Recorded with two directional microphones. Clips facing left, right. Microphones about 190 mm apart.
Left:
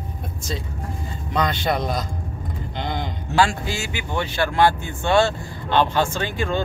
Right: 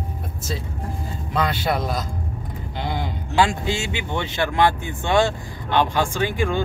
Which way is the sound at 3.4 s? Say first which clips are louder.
Even; 20° right (ahead or behind).